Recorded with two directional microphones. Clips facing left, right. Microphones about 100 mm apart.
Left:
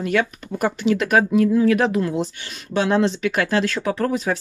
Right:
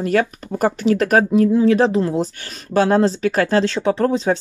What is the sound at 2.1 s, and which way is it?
Speech, 45° right (ahead or behind).